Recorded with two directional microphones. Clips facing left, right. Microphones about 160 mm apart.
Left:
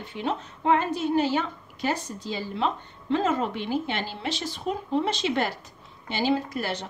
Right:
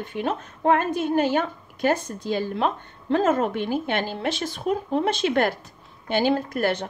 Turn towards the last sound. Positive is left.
turn(degrees=-55)  # may be behind; listen again after turning